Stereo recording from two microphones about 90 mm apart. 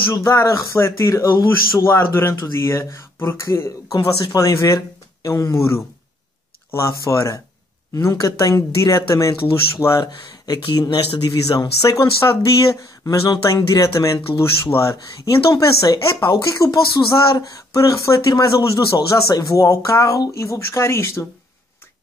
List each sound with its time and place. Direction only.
0.1 s speech: 35° left (ahead or behind)
10.0 s speech: 50° left (ahead or behind)
11.6 s speech: 40° left (ahead or behind)
14.1 s speech: 65° left (ahead or behind)
14.6 s speech: 30° left (ahead or behind)